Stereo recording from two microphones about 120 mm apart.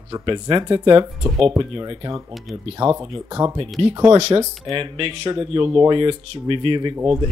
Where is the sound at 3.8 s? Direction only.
50° right (ahead or behind).